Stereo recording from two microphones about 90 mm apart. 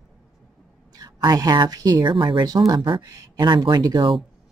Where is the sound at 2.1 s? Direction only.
65° right (ahead or behind).